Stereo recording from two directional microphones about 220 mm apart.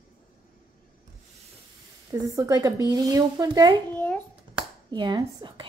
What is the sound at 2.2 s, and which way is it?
Speech, 15° right (ahead or behind).